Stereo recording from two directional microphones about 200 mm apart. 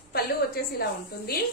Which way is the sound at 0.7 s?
50° left (ahead or behind).